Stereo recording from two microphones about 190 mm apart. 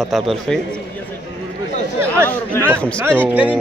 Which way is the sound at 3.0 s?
10° right (ahead or behind).